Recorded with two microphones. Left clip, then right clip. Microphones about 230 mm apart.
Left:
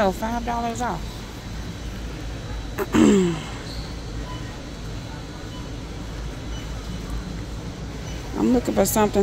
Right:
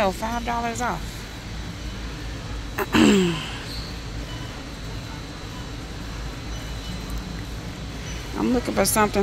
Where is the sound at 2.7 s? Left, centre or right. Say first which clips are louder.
Even; centre.